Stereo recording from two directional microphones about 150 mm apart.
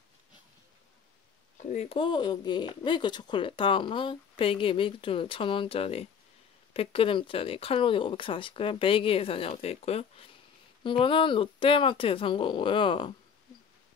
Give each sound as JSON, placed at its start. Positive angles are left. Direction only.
{"t": 1.6, "sound": "speech", "side_deg": 55}
{"t": 1.9, "sound": "speech", "side_deg": 35}